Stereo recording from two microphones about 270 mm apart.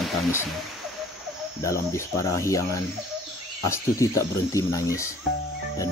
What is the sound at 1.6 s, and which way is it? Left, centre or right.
Speech, centre.